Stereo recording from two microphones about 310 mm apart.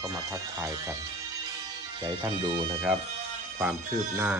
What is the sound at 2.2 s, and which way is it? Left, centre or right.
Speech, centre.